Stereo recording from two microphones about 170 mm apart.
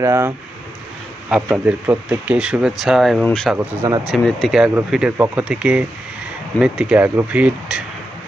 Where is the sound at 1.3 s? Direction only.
5° right (ahead or behind).